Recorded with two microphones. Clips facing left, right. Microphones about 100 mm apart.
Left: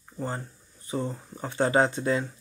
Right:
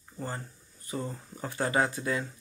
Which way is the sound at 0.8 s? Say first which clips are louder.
Left 5 dB; 20° left (ahead or behind).